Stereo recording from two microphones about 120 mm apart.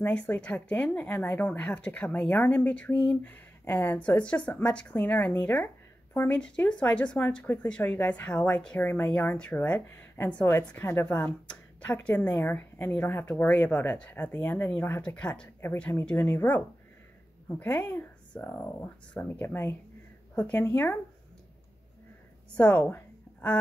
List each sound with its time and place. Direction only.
0.0 s speech: 10° left (ahead or behind)
22.5 s a woman's voice: 10° left (ahead or behind)